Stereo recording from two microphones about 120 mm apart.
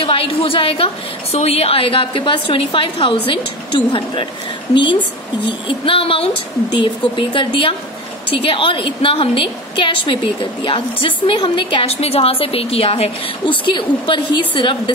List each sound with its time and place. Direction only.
0.0 s a woman's voice: 50° left (ahead or behind)
5.7 s a woman's voice: 50° left (ahead or behind)